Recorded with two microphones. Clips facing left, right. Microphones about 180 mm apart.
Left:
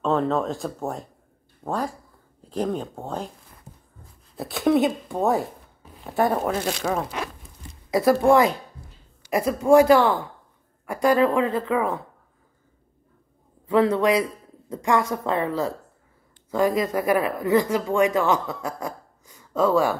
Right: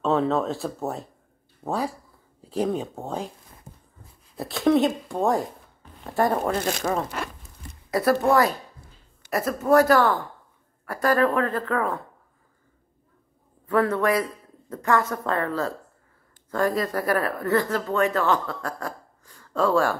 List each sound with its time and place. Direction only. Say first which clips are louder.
0.0 s speech: even; centre (ahead or behind)
3.7 s a sound: right 1 dB; 50° right (ahead or behind)
4.4 s speech: even; centre (ahead or behind)
13.7 s speech: left 3 dB; 10° left (ahead or behind)